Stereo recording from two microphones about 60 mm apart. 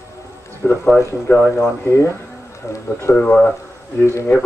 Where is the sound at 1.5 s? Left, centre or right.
Left.